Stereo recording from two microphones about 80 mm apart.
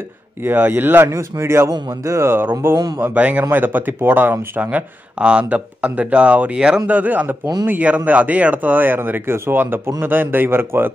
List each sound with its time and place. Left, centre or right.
0.4 s speech: right
3.0 s speech: centre